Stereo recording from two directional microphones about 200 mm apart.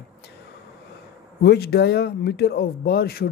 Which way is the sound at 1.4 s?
55° left (ahead or behind).